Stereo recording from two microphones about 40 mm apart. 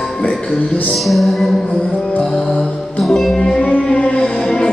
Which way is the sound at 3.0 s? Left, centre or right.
Centre.